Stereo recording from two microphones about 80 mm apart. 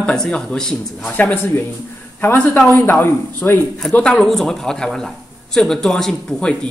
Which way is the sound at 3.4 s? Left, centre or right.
Centre.